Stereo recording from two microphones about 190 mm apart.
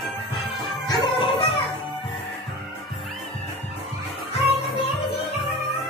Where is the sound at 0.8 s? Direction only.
25° left (ahead or behind).